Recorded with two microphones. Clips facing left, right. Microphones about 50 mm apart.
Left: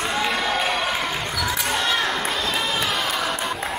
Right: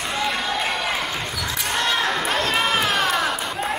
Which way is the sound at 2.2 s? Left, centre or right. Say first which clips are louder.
Right 3 dB; right.